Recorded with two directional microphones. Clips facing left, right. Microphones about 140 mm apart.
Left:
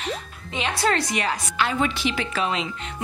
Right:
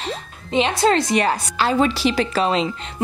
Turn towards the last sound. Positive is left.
turn(degrees=-35)  # may be behind; listen again after turning